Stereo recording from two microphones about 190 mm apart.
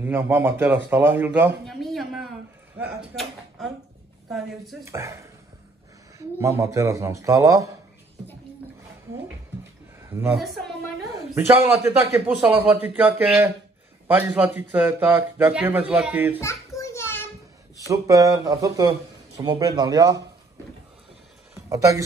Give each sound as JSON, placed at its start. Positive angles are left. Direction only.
{"t": 0.0, "sound": "speech", "side_deg": -10}
{"t": 1.7, "sound": "a man's voice", "side_deg": 0}
{"t": 4.8, "sound": "speech", "side_deg": -15}
{"t": 10.0, "sound": "a sound", "side_deg": -10}
{"t": 10.4, "sound": "speech", "side_deg": 0}
{"t": 11.1, "sound": "speech", "side_deg": -15}
{"t": 16.3, "sound": "children playing", "side_deg": 15}
{"t": 17.8, "sound": "speech", "side_deg": -15}
{"t": 21.6, "sound": "speech", "side_deg": -15}